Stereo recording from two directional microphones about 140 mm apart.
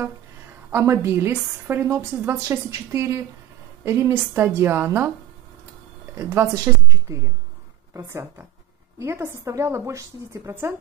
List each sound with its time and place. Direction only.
0.7 s a woman's voice: 20° right (ahead or behind)
6.1 s a woman's voice: 15° right (ahead or behind)